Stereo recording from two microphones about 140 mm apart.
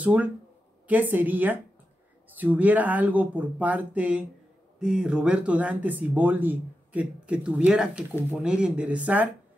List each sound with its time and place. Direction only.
0.0 s speech: 10° right (ahead or behind)